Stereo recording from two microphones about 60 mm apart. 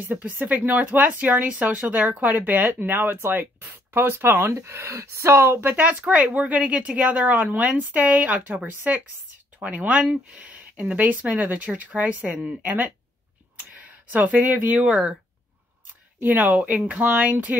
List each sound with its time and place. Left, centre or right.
0.4 s speech: right
4.6 s speech: right
13.7 s speech: right
14.9 s speech: centre
16.2 s speech: right